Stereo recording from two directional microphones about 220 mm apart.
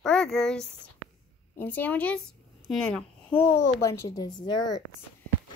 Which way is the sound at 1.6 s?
5° left (ahead or behind).